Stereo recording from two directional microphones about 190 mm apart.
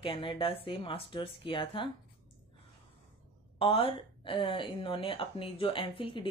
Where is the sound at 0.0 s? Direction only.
25° left (ahead or behind).